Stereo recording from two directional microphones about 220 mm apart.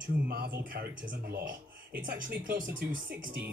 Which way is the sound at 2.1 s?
40° right (ahead or behind).